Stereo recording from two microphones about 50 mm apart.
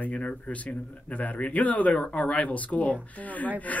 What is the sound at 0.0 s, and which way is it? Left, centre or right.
Speech, left.